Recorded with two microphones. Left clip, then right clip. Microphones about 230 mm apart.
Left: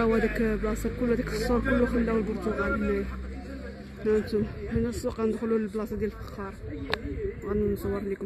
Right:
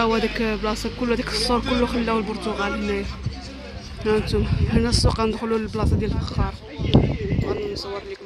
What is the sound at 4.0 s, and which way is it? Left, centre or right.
Speech, centre.